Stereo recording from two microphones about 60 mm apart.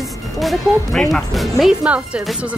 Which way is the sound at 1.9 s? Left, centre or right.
Right.